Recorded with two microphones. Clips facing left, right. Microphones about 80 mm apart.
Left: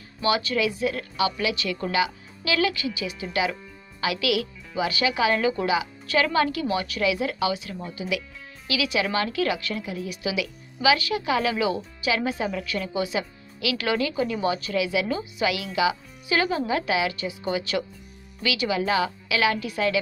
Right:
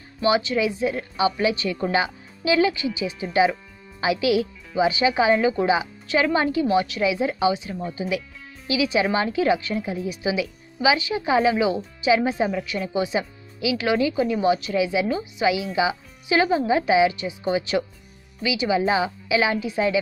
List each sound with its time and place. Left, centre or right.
0.2 s a woman's voice: centre
11.5 s a woman's voice: centre
14.8 s a woman's voice: right
16.3 s a woman's voice: centre